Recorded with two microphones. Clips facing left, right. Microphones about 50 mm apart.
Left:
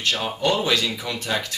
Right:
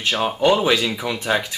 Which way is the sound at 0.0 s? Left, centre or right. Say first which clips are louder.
Right 5 dB; centre.